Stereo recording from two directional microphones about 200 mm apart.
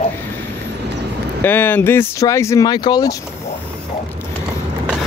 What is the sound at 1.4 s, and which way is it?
Speech, 10° left (ahead or behind).